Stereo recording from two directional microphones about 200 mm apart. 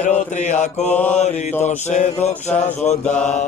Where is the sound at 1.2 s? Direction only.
35° left (ahead or behind).